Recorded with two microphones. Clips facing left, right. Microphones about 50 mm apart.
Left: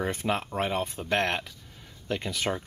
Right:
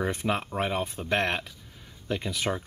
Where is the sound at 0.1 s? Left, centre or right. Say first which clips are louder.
Even; centre.